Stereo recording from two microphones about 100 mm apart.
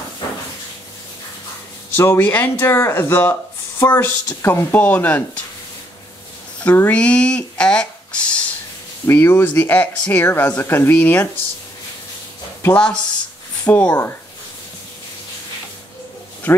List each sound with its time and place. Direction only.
2.0 s speech: 20° left (ahead or behind)
6.6 s speech: 15° left (ahead or behind)
9.0 s speech: 25° left (ahead or behind)
12.6 s speech: 15° left (ahead or behind)